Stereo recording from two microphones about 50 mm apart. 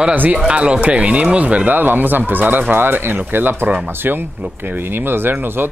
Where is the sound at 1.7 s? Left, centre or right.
Right.